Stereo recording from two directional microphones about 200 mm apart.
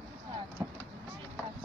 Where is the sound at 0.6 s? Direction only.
15° right (ahead or behind).